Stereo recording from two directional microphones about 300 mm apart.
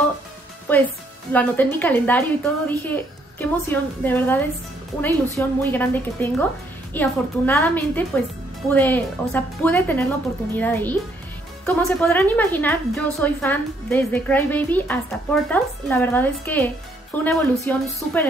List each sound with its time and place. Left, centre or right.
0.7 s a woman's voice: centre